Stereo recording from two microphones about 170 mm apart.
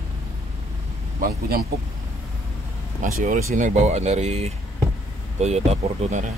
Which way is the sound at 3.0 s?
50° right (ahead or behind).